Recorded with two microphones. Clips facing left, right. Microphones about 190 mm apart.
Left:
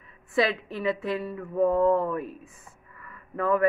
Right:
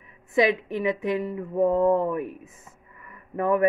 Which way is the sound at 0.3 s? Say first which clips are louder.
Right 4 dB; 15° right (ahead or behind).